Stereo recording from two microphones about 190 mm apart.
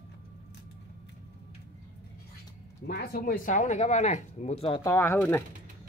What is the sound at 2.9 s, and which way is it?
Speech, 55° left (ahead or behind).